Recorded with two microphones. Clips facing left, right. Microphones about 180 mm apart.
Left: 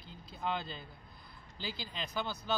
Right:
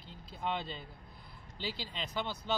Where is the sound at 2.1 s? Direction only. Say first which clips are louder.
Even; centre (ahead or behind).